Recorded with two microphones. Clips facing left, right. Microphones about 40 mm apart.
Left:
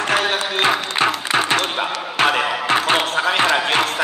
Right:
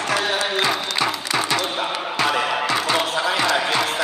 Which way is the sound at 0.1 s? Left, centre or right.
Left.